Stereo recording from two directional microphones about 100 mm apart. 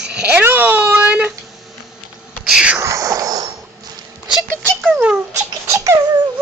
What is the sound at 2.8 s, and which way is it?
Speech, 35° right (ahead or behind).